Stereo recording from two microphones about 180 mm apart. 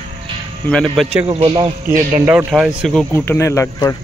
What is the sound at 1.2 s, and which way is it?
Speech, 35° right (ahead or behind).